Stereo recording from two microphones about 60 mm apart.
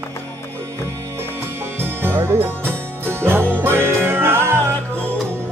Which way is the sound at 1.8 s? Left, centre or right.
Right.